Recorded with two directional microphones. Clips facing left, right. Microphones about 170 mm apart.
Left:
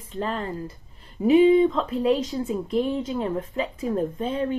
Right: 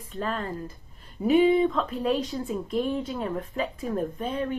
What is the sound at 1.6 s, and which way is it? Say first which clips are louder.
Speech: left 3 dB; 20° left (ahead or behind).